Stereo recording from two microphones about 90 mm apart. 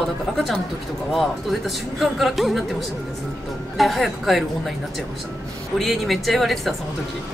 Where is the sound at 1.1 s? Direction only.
Centre (ahead or behind).